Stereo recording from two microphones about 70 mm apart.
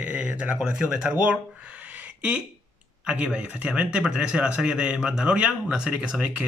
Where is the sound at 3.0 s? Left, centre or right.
Centre.